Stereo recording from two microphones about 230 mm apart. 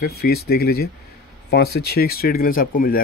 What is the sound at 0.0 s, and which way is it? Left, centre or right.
A man's voice, left.